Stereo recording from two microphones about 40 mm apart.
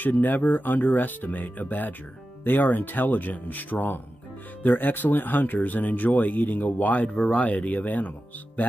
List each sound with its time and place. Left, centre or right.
0.0 s speech: left